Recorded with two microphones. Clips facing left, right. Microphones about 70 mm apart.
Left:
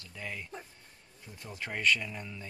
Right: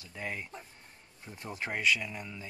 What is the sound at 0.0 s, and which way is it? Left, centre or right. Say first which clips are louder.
Speech: right 3 dB; right.